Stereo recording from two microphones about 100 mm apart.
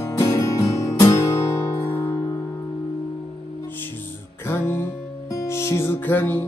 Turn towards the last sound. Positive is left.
turn(degrees=20)  # may be behind; listen again after turning